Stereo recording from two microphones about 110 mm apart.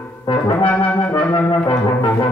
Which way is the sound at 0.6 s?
15° left (ahead or behind).